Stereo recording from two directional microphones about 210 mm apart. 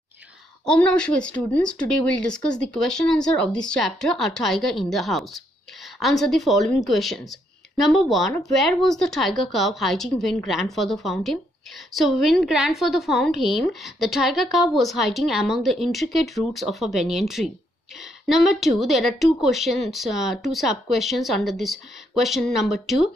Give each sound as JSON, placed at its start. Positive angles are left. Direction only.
{"t": 0.7, "sound": "a woman's voice", "side_deg": 5}